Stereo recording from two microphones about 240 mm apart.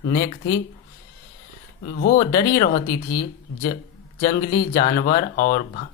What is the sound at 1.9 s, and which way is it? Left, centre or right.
Speech, left.